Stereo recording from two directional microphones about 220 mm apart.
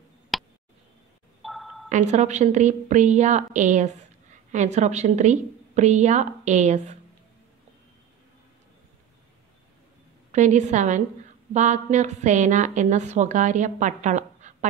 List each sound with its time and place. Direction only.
0.3 s a sound: centre (ahead or behind)
1.9 s a woman's voice: 35° right (ahead or behind)
10.3 s a woman's voice: 35° right (ahead or behind)